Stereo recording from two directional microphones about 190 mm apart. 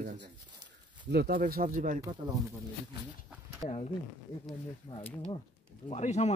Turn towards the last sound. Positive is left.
turn(degrees=35)  # may be behind; listen again after turning